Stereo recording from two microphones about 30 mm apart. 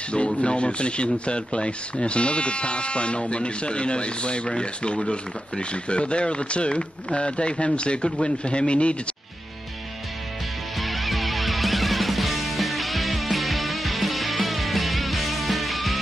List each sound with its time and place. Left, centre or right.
0.4 s speech: left
10.8 s music: centre